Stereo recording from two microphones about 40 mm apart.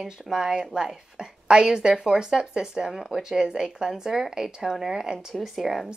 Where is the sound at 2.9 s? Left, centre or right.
Centre.